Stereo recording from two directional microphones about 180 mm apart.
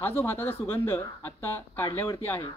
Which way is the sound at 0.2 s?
15° left (ahead or behind).